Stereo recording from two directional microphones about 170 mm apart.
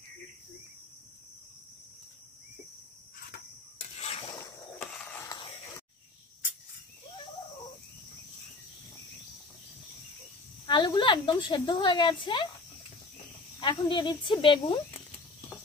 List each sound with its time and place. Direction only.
4.0 s rub: 35° left (ahead or behind)
4.4 s mechanisms: 20° left (ahead or behind)
4.7 s a sound: 10° left (ahead or behind)
10.7 s speech: 25° left (ahead or behind)
13.6 s speech: 25° left (ahead or behind)